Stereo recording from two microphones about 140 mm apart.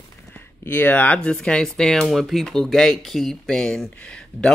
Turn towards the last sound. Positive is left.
turn(degrees=5)  # may be behind; listen again after turning